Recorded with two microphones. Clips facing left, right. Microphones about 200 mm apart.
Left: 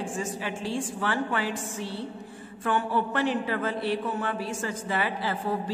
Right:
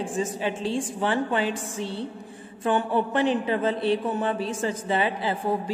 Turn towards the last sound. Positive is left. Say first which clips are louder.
# right 4 dB
turn(degrees=-20)  # may be behind; listen again after turning